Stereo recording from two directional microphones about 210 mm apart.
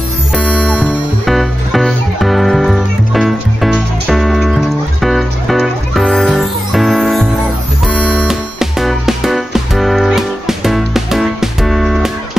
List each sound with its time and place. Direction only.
0.4 s music: 5° left (ahead or behind)